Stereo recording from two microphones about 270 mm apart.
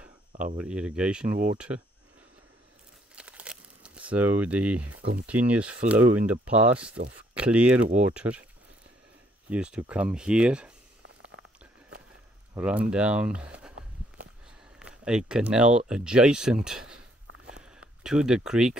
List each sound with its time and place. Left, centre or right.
0.3 s a sound: right
0.6 s speech: centre
3.2 s crumpling: centre
5.2 s speech: centre
9.5 s speech: centre
12.5 s walk: centre
14.8 s speech: centre
17.5 s a sound: centre